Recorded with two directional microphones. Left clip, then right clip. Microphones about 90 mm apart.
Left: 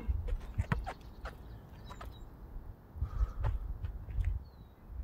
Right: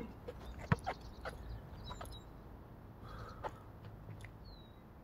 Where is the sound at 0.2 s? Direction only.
25° right (ahead or behind).